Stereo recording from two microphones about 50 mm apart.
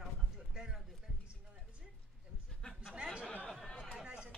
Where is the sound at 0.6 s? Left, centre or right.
Centre.